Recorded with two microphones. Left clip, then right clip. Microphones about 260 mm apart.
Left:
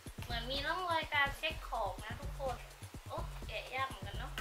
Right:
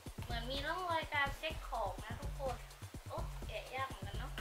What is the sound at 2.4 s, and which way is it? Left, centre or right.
Music, right.